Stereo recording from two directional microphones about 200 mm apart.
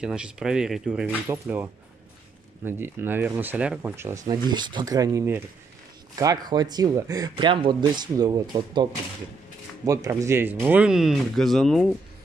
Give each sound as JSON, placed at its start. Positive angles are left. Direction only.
{"t": 0.0, "sound": "speech", "side_deg": -5}
{"t": 9.8, "sound": "speech", "side_deg": -15}